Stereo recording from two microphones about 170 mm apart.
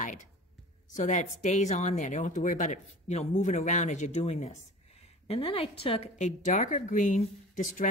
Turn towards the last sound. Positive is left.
turn(degrees=45)  # may be behind; listen again after turning